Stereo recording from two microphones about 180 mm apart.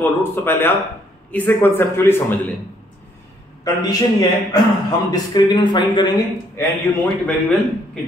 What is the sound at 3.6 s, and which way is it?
A man's voice, 20° left (ahead or behind).